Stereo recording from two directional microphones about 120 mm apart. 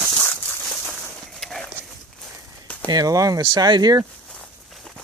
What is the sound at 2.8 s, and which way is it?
Speech, 30° right (ahead or behind).